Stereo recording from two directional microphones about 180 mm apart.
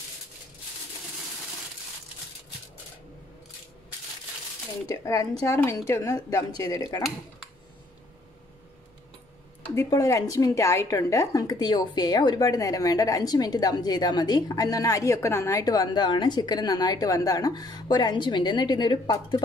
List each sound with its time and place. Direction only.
4.8 s a woman's voice: 20° left (ahead or behind)
9.8 s a woman's voice: 15° left (ahead or behind)